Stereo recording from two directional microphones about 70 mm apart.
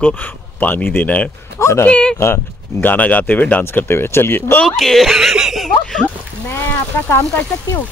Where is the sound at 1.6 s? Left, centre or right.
Left.